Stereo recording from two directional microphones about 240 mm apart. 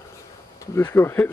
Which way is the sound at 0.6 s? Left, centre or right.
Centre.